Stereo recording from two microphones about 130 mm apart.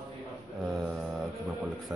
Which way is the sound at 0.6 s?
5° right (ahead or behind).